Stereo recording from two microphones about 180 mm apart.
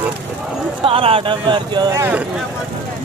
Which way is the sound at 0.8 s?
30° right (ahead or behind).